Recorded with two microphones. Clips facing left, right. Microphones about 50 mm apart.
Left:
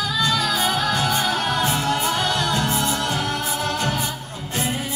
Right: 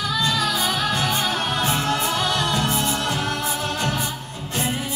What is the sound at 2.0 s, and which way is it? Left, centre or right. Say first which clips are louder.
Music: left 1 dB; left.